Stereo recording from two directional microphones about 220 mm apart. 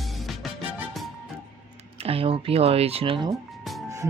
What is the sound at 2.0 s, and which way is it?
Speech, 25° right (ahead or behind).